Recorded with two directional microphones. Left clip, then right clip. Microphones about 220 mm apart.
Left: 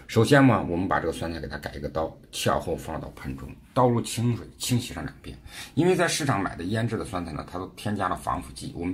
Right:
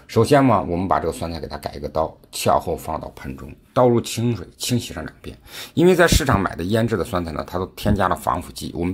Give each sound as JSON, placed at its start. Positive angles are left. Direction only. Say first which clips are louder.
{"t": 0.1, "sound": "speech", "louder": "right 4 dB", "side_deg": -20}